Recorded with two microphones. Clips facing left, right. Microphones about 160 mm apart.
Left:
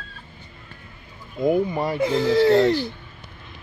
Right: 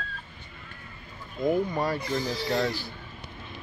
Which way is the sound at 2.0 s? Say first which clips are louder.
Left 12 dB; 90° left.